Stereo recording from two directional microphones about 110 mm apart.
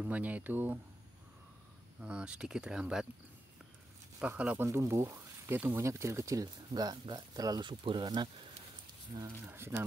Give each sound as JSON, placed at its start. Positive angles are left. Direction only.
{"t": 0.0, "sound": "speech", "side_deg": -15}
{"t": 2.0, "sound": "speech", "side_deg": -10}
{"t": 4.2, "sound": "speech", "side_deg": -10}
{"t": 4.6, "sound": "speech", "side_deg": -25}
{"t": 9.4, "sound": "speech", "side_deg": -20}